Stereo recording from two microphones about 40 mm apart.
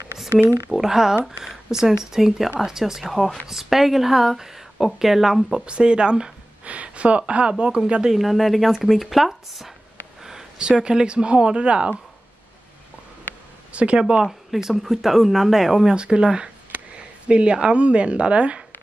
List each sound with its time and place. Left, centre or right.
0.7 s speech: centre
5.5 s speech: right
6.6 s speech: right
8.1 s speech: centre
10.2 s a sound: centre
10.7 s speech: right
13.7 s speech: right
14.2 s speech: centre
15.9 s speech: right